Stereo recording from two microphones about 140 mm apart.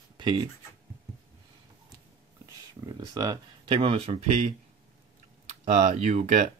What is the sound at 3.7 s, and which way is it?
Speech, 40° right (ahead or behind).